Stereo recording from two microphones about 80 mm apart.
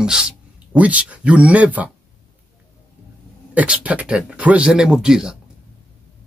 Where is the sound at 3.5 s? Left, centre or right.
Centre.